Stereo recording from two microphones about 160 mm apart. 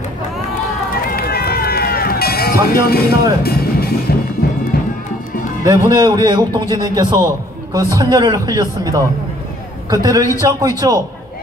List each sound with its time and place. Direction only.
1.1 s run: 70° left (ahead or behind)
3.4 s music: 75° left (ahead or behind)
5.6 s a man's voice: 25° right (ahead or behind)